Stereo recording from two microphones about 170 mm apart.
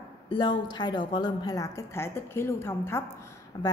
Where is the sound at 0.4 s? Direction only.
25° left (ahead or behind).